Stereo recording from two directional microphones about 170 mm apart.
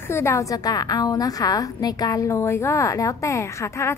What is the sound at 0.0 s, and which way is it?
A woman's voice, 15° left (ahead or behind).